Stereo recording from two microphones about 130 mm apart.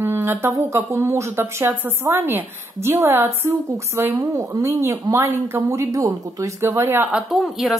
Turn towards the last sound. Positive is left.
turn(degrees=0)  # may be behind; listen again after turning